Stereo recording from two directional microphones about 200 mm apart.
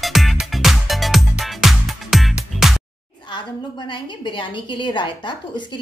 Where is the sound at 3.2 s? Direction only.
20° left (ahead or behind).